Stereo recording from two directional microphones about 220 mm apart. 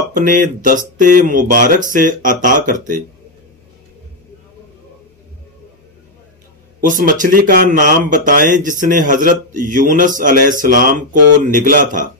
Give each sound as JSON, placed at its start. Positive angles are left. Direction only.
{"t": 0.1, "sound": "speech", "side_deg": -35}
{"t": 6.8, "sound": "speech", "side_deg": -35}